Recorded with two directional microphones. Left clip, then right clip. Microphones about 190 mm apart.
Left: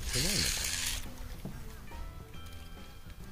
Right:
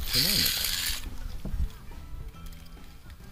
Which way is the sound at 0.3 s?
45° right (ahead or behind).